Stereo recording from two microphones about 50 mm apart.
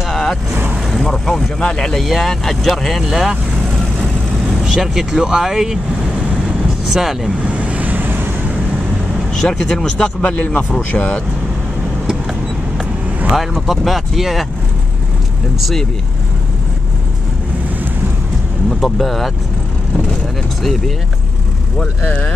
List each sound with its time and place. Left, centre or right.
0.1 s vehicle: centre
1.0 s speech: centre
4.6 s speech: centre
6.9 s speech: centre
7.4 s vehicle: right
9.3 s speech: centre
9.9 s speech: left
13.4 s speech: centre
18.7 s speech: centre
22.0 s speech: left